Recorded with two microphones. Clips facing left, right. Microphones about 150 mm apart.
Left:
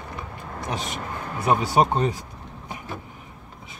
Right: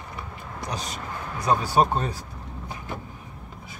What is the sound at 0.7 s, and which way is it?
Speech, 25° left (ahead or behind).